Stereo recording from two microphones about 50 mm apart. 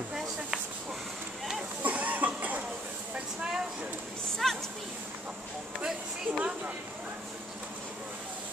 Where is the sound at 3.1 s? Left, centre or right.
Centre.